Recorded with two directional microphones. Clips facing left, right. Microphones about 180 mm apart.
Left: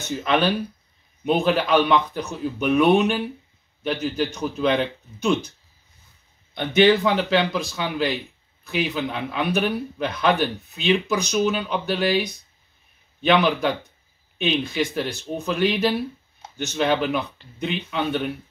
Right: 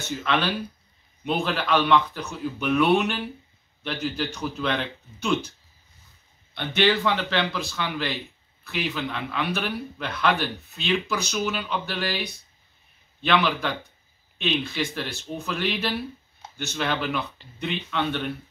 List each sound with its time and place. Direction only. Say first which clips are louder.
0.2 s speech: left 5 dB; 15° left (ahead or behind)
6.5 s speech: left 6 dB; 15° left (ahead or behind)